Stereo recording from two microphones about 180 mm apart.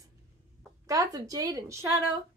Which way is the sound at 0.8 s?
20° right (ahead or behind).